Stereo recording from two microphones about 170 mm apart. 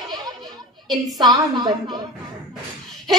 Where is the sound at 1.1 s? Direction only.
25° right (ahead or behind).